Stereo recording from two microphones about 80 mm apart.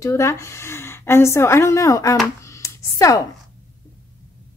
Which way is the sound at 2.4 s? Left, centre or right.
Left.